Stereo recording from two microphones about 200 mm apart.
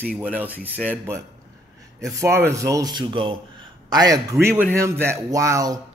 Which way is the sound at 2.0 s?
15° right (ahead or behind).